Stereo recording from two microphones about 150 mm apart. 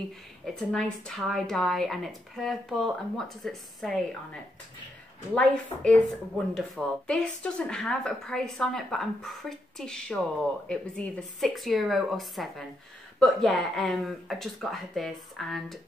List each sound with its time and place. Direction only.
0.6 s speech: centre (ahead or behind)